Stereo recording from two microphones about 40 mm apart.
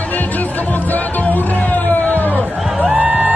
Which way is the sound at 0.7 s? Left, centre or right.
Left.